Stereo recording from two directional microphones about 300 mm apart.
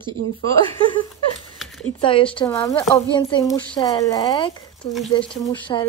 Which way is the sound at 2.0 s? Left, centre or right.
Centre.